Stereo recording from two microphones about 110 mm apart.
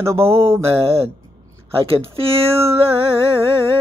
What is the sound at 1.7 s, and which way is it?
Speech, 60° right (ahead or behind).